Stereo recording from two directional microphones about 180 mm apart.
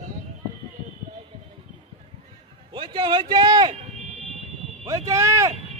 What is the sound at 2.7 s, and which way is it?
A man's voice, 25° right (ahead or behind).